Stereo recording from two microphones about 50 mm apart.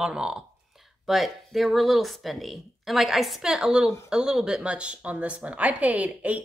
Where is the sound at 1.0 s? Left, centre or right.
Centre.